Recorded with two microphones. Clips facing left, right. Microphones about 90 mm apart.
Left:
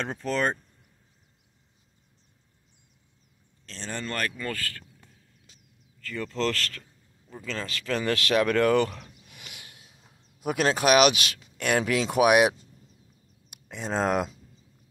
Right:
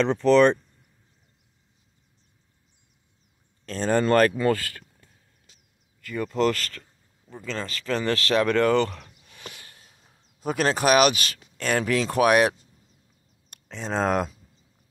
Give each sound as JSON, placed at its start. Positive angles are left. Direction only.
{"t": 0.0, "sound": "speech", "side_deg": -90}
{"t": 3.6, "sound": "speech", "side_deg": -50}
{"t": 4.4, "sound": "speech", "side_deg": -20}
{"t": 5.9, "sound": "speech", "side_deg": -15}
{"t": 9.5, "sound": "a sound", "side_deg": 10}
{"t": 10.4, "sound": "speech", "side_deg": 5}